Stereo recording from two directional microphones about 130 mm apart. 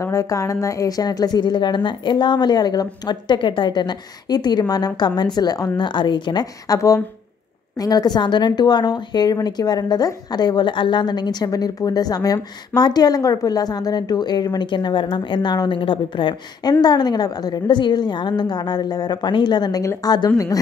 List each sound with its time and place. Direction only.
0.0 s a woman's voice: 25° left (ahead or behind)